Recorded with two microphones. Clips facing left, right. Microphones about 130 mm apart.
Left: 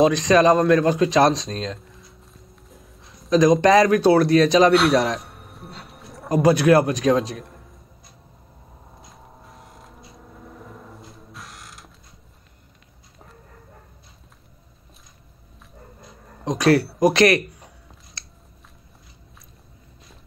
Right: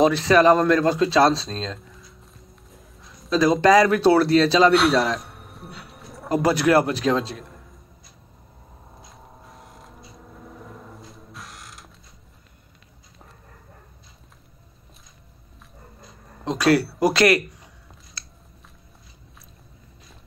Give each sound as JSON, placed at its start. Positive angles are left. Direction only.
{"t": 0.0, "sound": "speech", "side_deg": 15}
{"t": 2.2, "sound": "music", "side_deg": 0}
{"t": 3.3, "sound": "speech", "side_deg": 20}
{"t": 4.7, "sound": "a man's voice", "side_deg": 0}
{"t": 5.2, "sound": "music", "side_deg": 0}
{"t": 6.2, "sound": "speech", "side_deg": 15}
{"t": 8.9, "sound": "creak", "side_deg": 0}
{"t": 17.0, "sound": "speech", "side_deg": 20}